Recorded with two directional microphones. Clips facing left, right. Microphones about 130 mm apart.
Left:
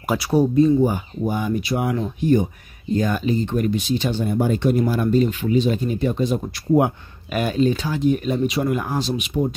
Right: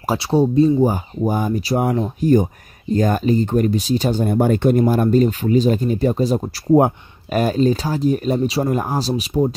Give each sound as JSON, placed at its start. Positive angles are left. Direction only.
{"t": 0.1, "sound": "speech", "side_deg": -30}